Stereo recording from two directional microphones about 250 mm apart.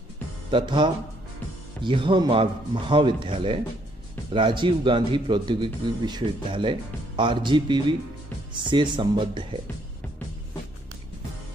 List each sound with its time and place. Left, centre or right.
0.5 s speech: centre